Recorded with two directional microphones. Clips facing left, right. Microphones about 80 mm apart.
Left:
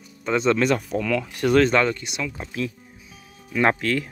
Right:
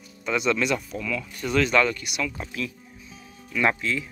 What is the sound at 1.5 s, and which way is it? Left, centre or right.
Speech, left.